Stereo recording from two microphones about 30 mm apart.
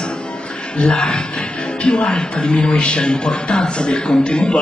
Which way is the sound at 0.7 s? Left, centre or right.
Left.